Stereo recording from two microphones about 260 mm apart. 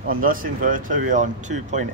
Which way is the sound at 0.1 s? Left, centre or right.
Right.